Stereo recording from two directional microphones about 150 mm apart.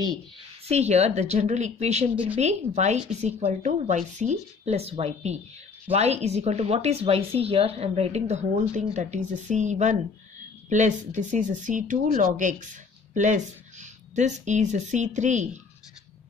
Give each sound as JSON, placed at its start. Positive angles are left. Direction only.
{"t": 0.7, "sound": "speech", "side_deg": -45}